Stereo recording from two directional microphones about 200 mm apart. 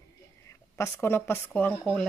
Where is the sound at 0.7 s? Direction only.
10° left (ahead or behind).